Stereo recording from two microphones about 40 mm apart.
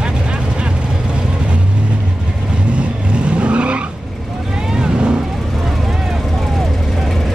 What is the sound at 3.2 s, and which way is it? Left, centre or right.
Vehicle, right.